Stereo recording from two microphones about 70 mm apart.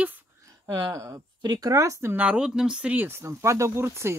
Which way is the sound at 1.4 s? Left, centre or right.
Right.